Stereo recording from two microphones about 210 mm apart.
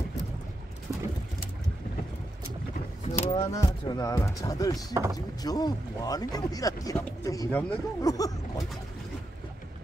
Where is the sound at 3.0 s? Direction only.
30° left (ahead or behind).